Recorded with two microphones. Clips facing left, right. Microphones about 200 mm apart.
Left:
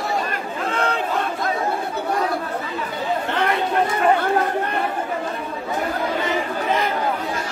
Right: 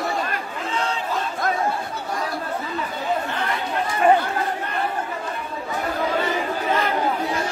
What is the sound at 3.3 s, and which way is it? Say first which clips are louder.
Chatter: left 5 dB; 60° left (ahead or behind).